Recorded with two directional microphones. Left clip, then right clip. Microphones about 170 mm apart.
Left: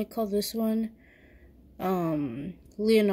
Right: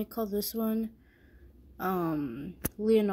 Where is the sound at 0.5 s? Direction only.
30° left (ahead or behind).